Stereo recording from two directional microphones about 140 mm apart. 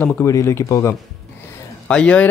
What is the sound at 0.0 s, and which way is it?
Speech, 10° left (ahead or behind).